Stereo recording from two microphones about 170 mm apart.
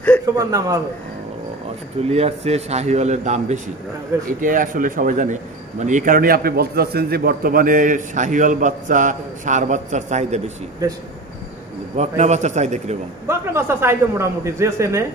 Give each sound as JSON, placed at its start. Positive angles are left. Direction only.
{"t": 0.4, "sound": "a man's voice", "side_deg": -20}
{"t": 2.0, "sound": "a man's voice", "side_deg": -40}
{"t": 4.4, "sound": "a man's voice", "side_deg": -50}
{"t": 10.8, "sound": "a man's voice", "side_deg": -20}
{"t": 12.0, "sound": "a man's voice", "side_deg": -40}
{"t": 13.3, "sound": "a woman's voice", "side_deg": -15}